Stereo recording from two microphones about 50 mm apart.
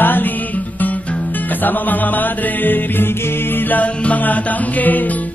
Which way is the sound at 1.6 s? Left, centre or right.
Left.